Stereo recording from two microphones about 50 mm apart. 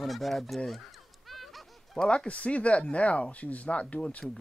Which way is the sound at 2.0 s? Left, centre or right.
Left.